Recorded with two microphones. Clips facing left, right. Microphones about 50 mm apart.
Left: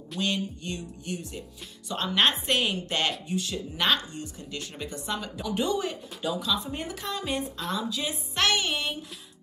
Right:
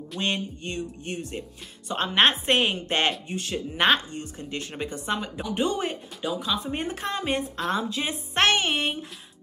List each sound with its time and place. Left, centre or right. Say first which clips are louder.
0.2 s speech: right 1 dB; right